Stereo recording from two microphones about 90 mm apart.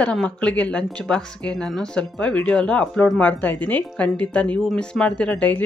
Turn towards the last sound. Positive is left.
turn(degrees=15)  # may be behind; listen again after turning